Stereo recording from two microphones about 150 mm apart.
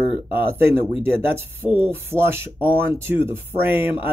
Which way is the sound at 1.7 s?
35° left (ahead or behind).